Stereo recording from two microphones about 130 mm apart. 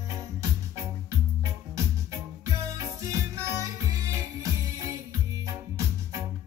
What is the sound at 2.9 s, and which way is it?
Music, 25° right (ahead or behind).